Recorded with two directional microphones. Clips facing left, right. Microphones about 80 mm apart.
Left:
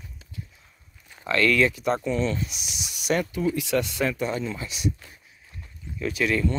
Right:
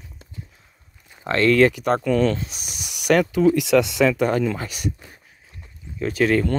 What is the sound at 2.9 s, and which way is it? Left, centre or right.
Speech, right.